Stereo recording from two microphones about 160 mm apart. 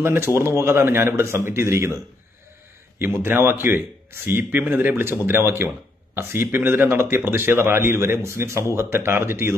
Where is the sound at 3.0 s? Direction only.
15° right (ahead or behind).